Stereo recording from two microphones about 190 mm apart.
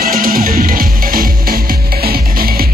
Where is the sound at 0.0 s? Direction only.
50° right (ahead or behind).